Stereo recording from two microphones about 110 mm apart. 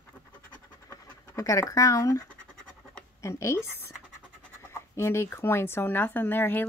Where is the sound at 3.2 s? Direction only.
25° left (ahead or behind).